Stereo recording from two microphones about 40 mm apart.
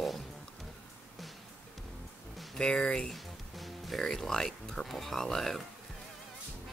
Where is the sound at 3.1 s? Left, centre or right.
Centre.